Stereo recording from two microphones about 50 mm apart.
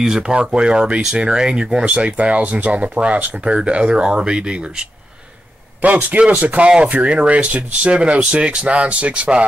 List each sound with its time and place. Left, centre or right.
0.0 s speech: centre
5.8 s speech: right